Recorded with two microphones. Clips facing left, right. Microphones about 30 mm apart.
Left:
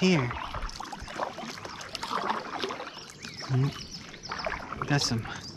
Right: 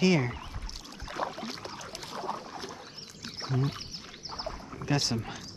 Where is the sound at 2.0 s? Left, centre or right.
Left.